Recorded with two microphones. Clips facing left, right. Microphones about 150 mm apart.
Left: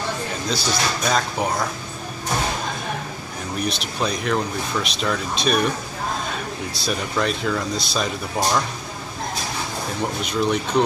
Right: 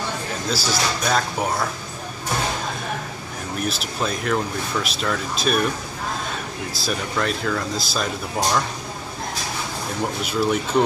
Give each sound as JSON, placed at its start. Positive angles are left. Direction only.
{"t": 0.5, "sound": "speech", "side_deg": -5}
{"t": 3.6, "sound": "speech", "side_deg": -5}
{"t": 6.7, "sound": "speech", "side_deg": 0}
{"t": 10.2, "sound": "speech", "side_deg": -5}